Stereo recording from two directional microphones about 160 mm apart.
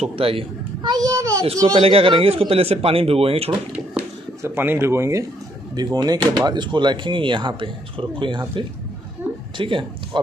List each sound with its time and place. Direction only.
0.0 s speech: 35° right (ahead or behind); by 1.4 s 20° right (ahead or behind)
1.8 s speech: 35° right (ahead or behind)
4.4 s speech: 15° right (ahead or behind); by 10.2 s 30° right (ahead or behind)